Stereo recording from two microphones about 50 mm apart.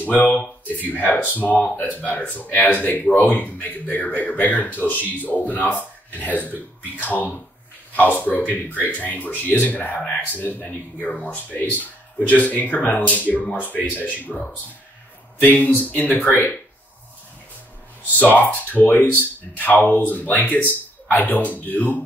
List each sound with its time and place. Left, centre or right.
0.0 s speech: left
11.1 s speech: left
12.2 s speech: left
15.3 s speech: left
18.1 s speech: left